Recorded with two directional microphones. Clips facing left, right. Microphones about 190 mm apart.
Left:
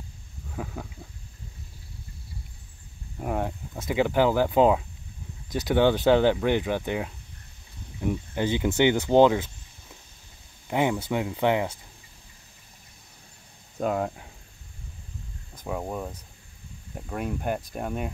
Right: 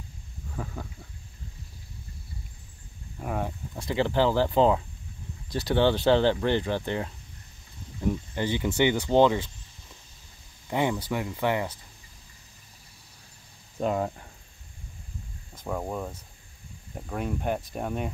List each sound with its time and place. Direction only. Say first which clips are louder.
0.5 s goat: left 1 dB; 5° left (ahead or behind)
3.2 s speech: left 3 dB; 15° left (ahead or behind)
5.5 s speech: left 2 dB; 20° left (ahead or behind)
10.7 s speech: left 2 dB; 15° left (ahead or behind)
13.7 s speech: left 1 dB; centre (ahead or behind)
15.6 s speech: even; 5° left (ahead or behind)